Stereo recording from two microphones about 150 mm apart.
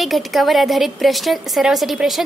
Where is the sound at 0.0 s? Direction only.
Centre (ahead or behind).